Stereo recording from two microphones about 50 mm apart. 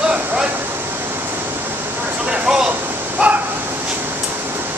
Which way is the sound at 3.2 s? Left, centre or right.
Right.